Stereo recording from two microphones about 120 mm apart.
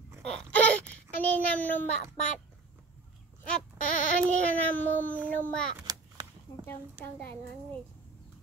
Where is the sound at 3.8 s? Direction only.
90° left.